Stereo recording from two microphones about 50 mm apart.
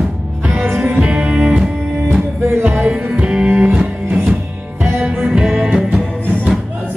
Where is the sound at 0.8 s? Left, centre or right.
Right.